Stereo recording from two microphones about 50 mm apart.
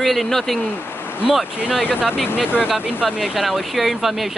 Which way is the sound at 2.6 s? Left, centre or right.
Centre.